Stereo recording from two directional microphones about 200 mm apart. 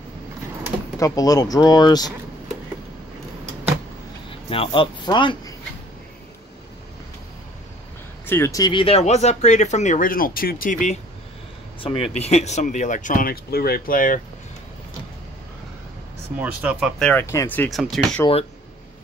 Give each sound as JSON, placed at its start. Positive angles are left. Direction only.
{"t": 0.9, "sound": "speech", "side_deg": 15}
{"t": 4.5, "sound": "speech", "side_deg": 25}
{"t": 8.3, "sound": "speech", "side_deg": 15}
{"t": 16.3, "sound": "speech", "side_deg": -5}
{"t": 17.0, "sound": "speech", "side_deg": 10}